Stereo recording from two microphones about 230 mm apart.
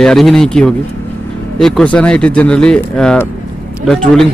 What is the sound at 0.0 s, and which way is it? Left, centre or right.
Speech, centre.